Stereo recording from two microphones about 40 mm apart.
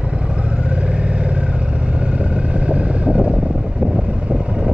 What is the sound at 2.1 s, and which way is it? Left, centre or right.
Vehicle, right.